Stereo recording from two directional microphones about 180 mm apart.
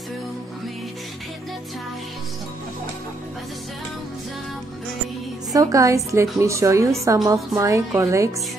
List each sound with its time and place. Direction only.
5.5 s a woman's voice: 20° right (ahead or behind)